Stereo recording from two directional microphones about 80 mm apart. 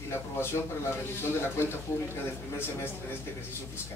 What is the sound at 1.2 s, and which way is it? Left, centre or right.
A man's voice, left.